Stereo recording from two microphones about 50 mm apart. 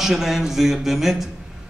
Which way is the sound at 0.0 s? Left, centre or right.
Centre.